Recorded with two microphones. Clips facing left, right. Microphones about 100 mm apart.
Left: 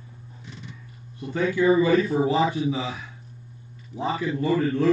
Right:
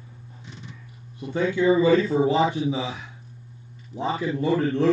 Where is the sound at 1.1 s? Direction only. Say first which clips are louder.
Even; 20° right (ahead or behind).